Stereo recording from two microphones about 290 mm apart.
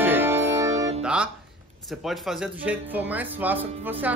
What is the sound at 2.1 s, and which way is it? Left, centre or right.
A man's voice, centre.